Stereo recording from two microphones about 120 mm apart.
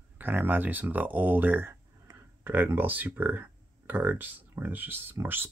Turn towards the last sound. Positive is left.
turn(degrees=-15)  # may be behind; listen again after turning